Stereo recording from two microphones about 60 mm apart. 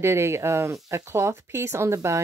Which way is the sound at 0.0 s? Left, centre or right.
Right.